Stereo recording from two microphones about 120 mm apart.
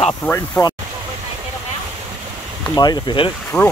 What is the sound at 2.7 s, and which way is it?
Speech, 35° left (ahead or behind).